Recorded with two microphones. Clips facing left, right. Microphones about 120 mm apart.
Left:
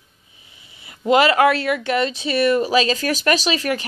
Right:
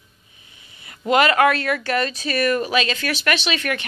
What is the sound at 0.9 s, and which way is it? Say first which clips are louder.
A woman's voice: left 2 dB; 25° left (ahead or behind).